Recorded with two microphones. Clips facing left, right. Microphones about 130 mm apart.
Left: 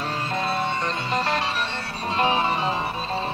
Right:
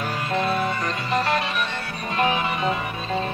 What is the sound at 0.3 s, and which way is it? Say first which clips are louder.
Music: right 3 dB; 30° left (ahead or behind).